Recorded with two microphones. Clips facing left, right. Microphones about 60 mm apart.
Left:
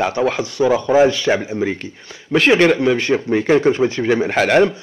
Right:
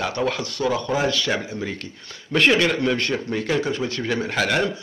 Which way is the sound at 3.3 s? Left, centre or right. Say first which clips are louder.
Left 12 dB; left.